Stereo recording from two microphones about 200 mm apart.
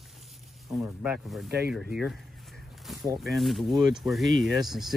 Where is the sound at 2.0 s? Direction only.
Centre (ahead or behind).